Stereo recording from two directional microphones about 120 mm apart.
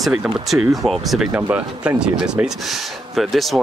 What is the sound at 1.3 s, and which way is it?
Speech, 10° right (ahead or behind).